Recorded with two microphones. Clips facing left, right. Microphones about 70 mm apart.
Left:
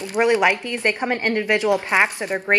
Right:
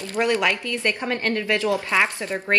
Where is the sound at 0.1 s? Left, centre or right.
Left.